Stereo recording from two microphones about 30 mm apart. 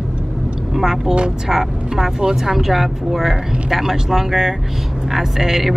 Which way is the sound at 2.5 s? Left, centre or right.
Centre.